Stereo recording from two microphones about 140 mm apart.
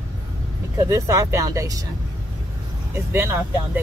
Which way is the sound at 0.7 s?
20° right (ahead or behind).